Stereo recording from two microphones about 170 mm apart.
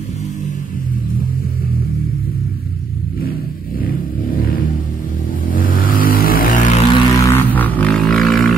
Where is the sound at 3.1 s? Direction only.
60° left (ahead or behind).